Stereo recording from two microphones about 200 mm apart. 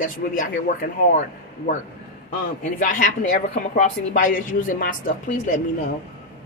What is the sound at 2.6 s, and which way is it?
A woman's voice, 40° left (ahead or behind).